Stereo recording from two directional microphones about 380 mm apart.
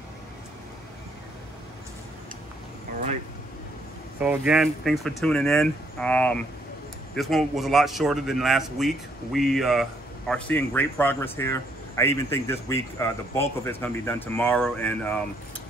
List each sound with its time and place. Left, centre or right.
4.2 s a man's voice: centre